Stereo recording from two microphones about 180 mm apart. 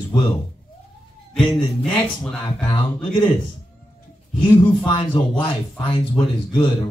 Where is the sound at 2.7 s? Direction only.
25° left (ahead or behind).